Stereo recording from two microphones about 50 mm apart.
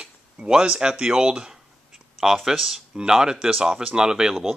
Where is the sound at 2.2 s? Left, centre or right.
Centre.